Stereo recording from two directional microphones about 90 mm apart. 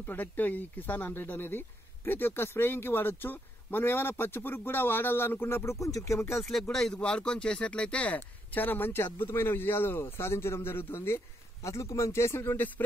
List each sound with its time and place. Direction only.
0.0 s speech: 20° left (ahead or behind)
6.7 s speech: 5° left (ahead or behind); by 12.8 s 20° left (ahead or behind)